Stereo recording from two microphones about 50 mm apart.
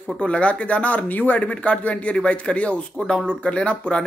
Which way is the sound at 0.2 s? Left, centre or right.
Left.